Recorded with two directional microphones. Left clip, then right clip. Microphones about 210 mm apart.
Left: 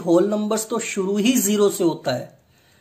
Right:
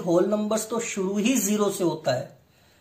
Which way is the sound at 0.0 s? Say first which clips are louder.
Left 4 dB; 40° left (ahead or behind).